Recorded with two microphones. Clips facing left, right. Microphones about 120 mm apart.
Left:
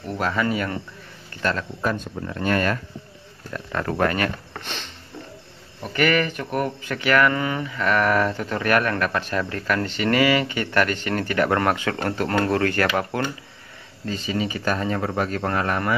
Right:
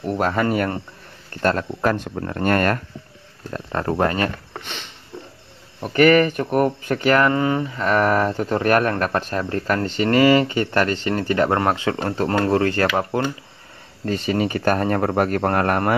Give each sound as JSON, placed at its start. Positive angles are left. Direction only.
{"t": 0.0, "sound": "speech", "side_deg": -45}
{"t": 1.8, "sound": "speech", "side_deg": -65}
{"t": 2.3, "sound": "speech", "side_deg": -50}
{"t": 3.4, "sound": "speech", "side_deg": -35}
{"t": 4.6, "sound": "a sound", "side_deg": -5}
{"t": 5.8, "sound": "speech", "side_deg": -40}
{"t": 14.0, "sound": "speech", "side_deg": -55}